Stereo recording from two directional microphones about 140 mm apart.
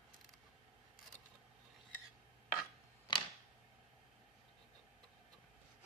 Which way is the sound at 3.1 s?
35° left (ahead or behind).